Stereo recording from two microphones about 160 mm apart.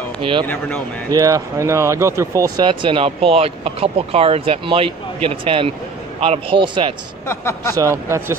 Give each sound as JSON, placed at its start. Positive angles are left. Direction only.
{"t": 0.2, "sound": "speech", "side_deg": -30}
{"t": 0.5, "sound": "speech", "side_deg": 10}
{"t": 1.1, "sound": "speech", "side_deg": -20}
{"t": 7.2, "sound": "speech", "side_deg": 15}
{"t": 7.7, "sound": "speech", "side_deg": -20}